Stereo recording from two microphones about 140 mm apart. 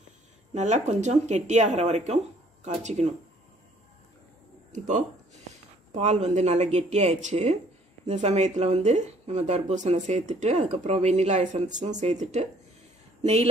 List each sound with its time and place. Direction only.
0.6 s speech: 55° right (ahead or behind)
4.7 s speech: 60° right (ahead or behind)